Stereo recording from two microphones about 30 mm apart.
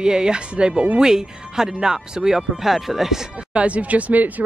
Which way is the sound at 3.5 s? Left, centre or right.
Right.